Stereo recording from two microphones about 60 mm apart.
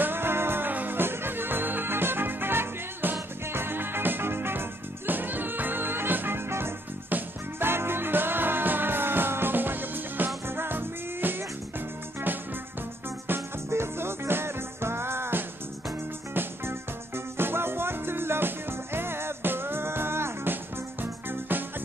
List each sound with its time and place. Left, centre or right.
0.0 s music: right
13.3 s music: right